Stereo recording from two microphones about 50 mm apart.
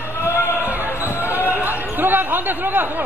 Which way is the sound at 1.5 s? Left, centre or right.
Right.